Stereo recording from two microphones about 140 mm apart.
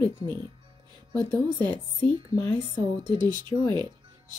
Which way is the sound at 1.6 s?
30° right (ahead or behind).